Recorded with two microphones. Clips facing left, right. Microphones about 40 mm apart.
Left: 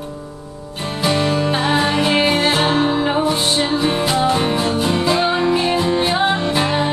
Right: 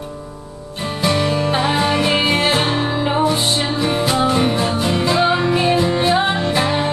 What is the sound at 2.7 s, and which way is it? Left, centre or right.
Music, left.